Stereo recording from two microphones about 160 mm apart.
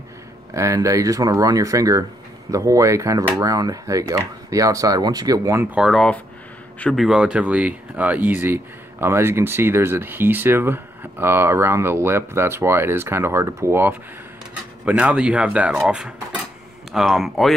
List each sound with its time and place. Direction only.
0.6 s speech: 20° right (ahead or behind)
5.8 s speech: centre (ahead or behind)